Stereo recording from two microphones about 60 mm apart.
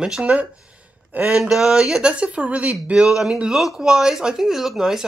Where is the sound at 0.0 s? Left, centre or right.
Centre.